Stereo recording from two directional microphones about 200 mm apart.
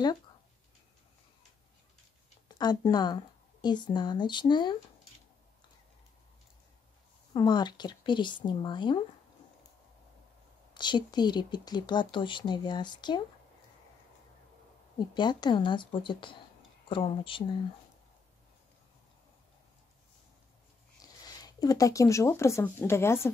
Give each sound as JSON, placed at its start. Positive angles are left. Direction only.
{"t": 2.4, "sound": "a woman's voice", "side_deg": 20}
{"t": 7.3, "sound": "speech", "side_deg": 20}
{"t": 10.7, "sound": "speech", "side_deg": 20}
{"t": 15.0, "sound": "speech", "side_deg": 20}
{"t": 21.2, "sound": "speech", "side_deg": 20}